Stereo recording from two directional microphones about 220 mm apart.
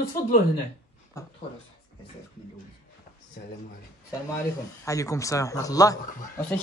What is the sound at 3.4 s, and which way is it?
Speech, 45° left (ahead or behind).